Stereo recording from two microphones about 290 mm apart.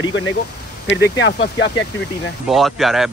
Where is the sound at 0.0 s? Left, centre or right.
Left.